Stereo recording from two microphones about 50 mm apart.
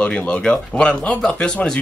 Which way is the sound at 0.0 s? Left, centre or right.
Left.